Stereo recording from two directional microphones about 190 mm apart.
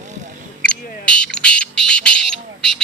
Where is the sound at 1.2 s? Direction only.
5° left (ahead or behind).